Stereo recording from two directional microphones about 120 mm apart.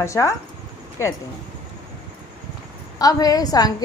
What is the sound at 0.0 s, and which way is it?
Speech, 25° left (ahead or behind).